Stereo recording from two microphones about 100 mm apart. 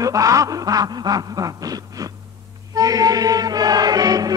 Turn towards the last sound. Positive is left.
turn(degrees=-40)  # may be behind; listen again after turning